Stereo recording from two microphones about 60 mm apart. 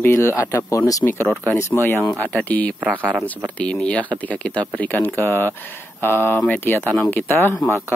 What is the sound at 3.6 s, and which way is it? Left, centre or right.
Speech, centre.